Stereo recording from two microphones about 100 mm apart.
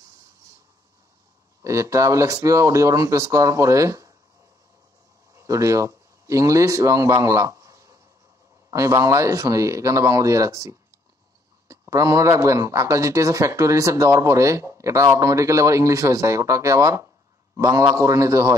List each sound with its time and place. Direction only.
1.6 s speech: 30° right (ahead or behind)
5.3 s speech: 30° right (ahead or behind)